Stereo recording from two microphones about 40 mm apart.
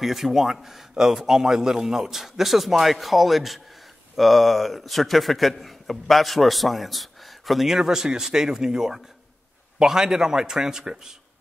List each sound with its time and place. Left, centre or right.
0.0 s a man's voice: centre